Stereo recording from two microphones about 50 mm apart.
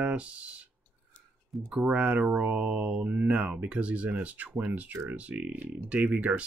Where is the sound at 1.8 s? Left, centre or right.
Right.